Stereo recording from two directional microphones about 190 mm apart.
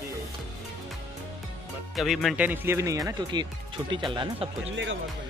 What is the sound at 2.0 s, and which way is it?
Speech, centre (ahead or behind).